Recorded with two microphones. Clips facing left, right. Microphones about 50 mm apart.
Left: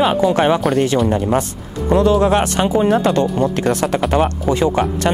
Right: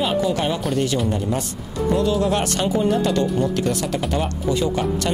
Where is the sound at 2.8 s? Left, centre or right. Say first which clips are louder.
Left 4 dB; left.